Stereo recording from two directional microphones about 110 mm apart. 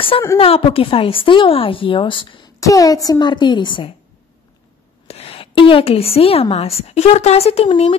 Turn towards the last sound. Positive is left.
turn(degrees=70)  # may be behind; listen again after turning